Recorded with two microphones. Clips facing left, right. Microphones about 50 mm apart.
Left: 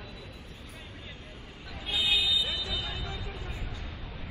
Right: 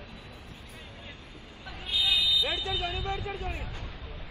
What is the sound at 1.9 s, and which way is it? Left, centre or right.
Vehicle, left.